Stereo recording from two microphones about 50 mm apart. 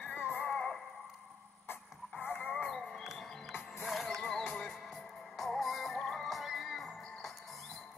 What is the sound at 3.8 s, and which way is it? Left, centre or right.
Music, centre.